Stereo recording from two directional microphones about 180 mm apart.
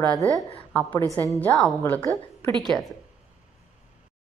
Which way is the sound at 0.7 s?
10° left (ahead or behind).